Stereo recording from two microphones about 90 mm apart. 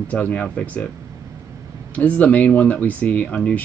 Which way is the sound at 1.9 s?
15° left (ahead or behind).